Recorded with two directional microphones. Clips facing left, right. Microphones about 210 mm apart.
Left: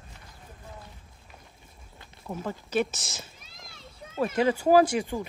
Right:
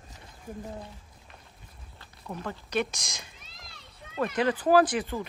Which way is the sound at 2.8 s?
15° right (ahead or behind).